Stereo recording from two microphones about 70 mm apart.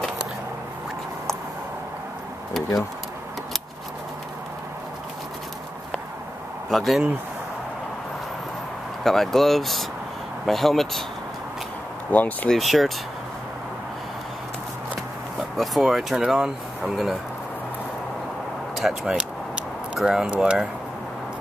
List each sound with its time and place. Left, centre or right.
6.7 s speech: centre
9.0 s speech: centre
12.1 s speech: left
12.4 s speech: centre
15.5 s speech: centre
18.8 s speech: centre